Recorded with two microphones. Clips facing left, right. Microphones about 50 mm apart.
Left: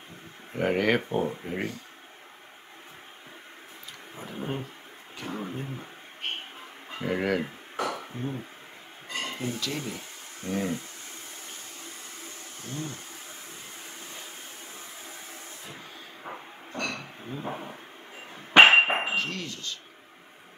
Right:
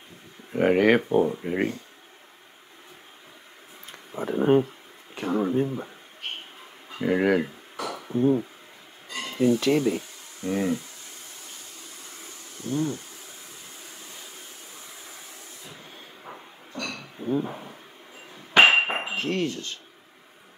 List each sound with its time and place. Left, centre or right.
0.5 s speech: centre
4.3 s speech: right
7.0 s speech: centre
7.7 s beatboxing: left
8.1 s speech: right
9.1 s a sound: left
9.5 s speech: right
10.4 s speech: right
12.6 s speech: right
16.3 s train: left
16.7 s a sound: left
17.5 s speech: left
18.3 s hammer: left
19.1 s speech: right